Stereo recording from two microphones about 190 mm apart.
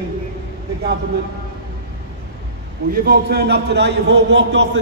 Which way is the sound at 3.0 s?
55° right (ahead or behind).